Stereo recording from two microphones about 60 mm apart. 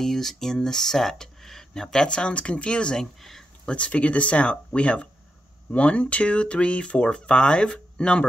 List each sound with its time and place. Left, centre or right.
0.0 s speech: centre
3.2 s speech: centre
3.6 s speech: centre